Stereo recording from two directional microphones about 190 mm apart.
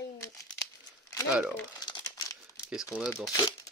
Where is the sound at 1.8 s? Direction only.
20° left (ahead or behind).